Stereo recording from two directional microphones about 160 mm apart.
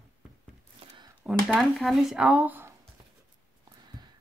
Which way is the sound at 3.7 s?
25° right (ahead or behind).